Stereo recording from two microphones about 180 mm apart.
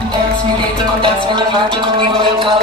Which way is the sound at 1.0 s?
25° right (ahead or behind).